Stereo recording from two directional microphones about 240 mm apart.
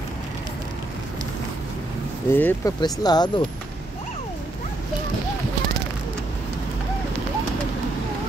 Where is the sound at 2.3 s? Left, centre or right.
Centre.